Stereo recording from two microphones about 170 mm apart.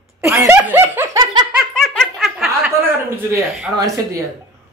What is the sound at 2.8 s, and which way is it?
Speech, 15° right (ahead or behind).